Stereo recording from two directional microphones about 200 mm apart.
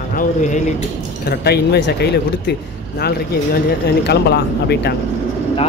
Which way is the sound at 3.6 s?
55° left (ahead or behind).